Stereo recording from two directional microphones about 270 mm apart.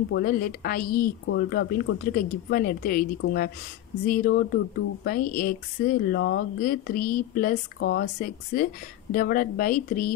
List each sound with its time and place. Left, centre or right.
0.1 s speech: left